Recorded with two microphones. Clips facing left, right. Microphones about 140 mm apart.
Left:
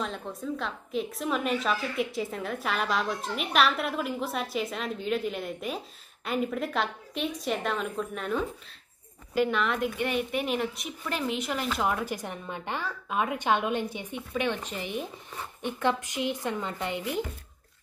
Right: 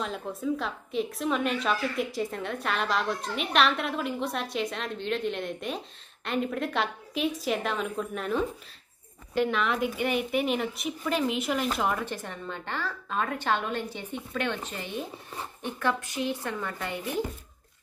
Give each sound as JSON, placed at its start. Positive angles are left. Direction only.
{"t": 0.0, "sound": "a woman's voice", "side_deg": -5}